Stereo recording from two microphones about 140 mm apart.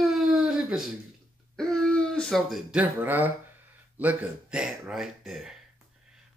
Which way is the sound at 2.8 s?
15° right (ahead or behind).